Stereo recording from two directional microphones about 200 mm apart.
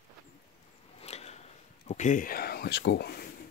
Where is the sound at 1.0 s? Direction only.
35° left (ahead or behind).